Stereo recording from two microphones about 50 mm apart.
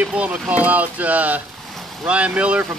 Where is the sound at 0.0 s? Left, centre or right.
Right.